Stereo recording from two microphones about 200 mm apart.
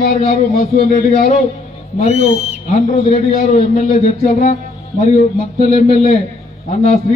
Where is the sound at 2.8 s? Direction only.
35° left (ahead or behind).